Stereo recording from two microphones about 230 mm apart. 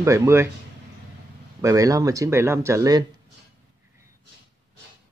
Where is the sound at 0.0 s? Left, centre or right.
Centre.